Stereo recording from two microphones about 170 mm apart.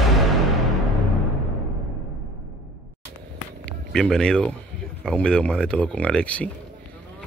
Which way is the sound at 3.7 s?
5° left (ahead or behind).